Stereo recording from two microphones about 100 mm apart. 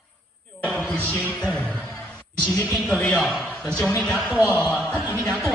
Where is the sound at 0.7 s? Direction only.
5° left (ahead or behind).